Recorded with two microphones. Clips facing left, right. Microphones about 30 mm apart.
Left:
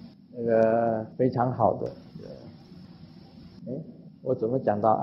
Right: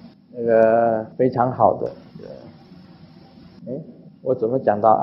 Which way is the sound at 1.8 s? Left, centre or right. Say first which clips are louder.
Right 7 dB; centre.